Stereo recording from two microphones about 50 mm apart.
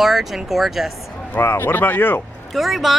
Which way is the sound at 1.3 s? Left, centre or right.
Left.